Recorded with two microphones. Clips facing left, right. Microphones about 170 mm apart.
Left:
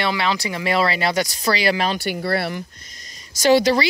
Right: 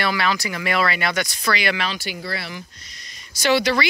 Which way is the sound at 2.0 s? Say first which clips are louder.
Left 8 dB; 60° left (ahead or behind).